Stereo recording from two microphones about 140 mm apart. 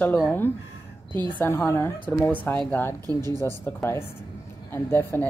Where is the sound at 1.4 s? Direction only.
15° left (ahead or behind).